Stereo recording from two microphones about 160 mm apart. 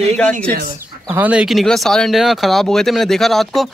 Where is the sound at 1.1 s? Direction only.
10° right (ahead or behind).